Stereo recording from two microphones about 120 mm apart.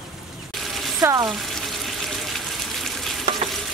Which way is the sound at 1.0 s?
30° right (ahead or behind).